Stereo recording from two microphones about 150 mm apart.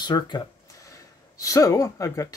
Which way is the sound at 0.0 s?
30° left (ahead or behind).